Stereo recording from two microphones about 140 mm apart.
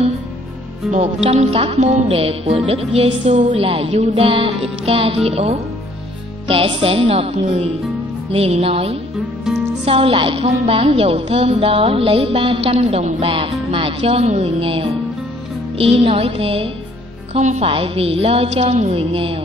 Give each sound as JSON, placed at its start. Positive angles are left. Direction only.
{"t": 0.9, "sound": "music", "side_deg": -50}
{"t": 3.5, "sound": "a woman's voice", "side_deg": -40}
{"t": 8.3, "sound": "music", "side_deg": -40}
{"t": 9.8, "sound": "a woman's voice", "side_deg": -40}
{"t": 17.3, "sound": "music", "side_deg": -50}
{"t": 18.9, "sound": "a woman's voice", "side_deg": -40}